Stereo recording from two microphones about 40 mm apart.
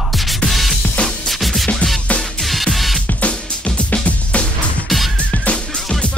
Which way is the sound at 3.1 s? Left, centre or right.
Left.